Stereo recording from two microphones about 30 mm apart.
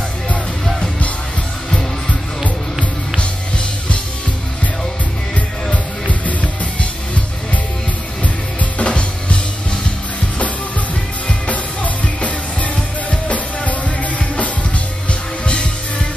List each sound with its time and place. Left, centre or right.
3.2 s music: left
8.2 s drum kit: left
11.2 s music: left
15.0 s music: left